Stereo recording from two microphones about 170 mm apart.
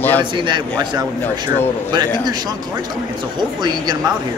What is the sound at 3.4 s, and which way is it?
Speech, 25° right (ahead or behind).